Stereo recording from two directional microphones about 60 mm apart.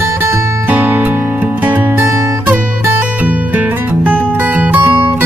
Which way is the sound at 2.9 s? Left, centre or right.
Right.